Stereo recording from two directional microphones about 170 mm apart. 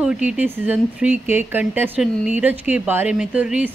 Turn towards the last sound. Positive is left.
turn(degrees=-5)  # may be behind; listen again after turning